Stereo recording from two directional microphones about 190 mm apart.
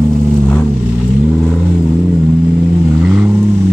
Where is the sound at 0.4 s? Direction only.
Centre (ahead or behind).